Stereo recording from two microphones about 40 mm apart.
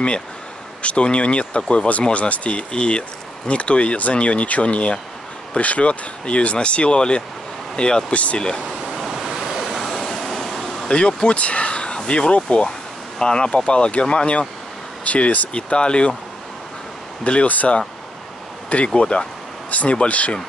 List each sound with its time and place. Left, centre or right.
0.8 s speech: left
2.1 s speech: left
8.1 s speech: left
8.4 s speech: left
8.6 s waves: centre
9.8 s vehicle: centre
10.9 s speech: left
15.5 s speech: left
17.2 s speech: left
18.9 s speech: left